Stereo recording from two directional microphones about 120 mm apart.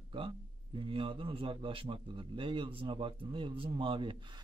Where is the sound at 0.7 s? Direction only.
50° right (ahead or behind).